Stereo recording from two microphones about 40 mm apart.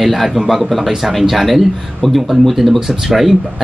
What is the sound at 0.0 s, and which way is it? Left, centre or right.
Speech, centre.